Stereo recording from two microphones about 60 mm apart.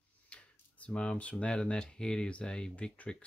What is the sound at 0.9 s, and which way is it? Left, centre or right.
Speech, centre.